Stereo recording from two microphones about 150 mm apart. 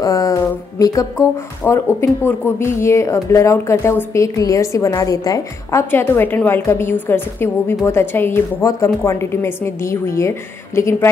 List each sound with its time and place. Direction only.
0.0 s a woman's voice: 25° left (ahead or behind)